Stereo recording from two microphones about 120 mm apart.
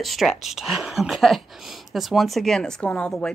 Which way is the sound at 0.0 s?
Centre (ahead or behind).